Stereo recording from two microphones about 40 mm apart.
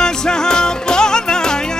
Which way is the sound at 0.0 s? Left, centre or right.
Centre.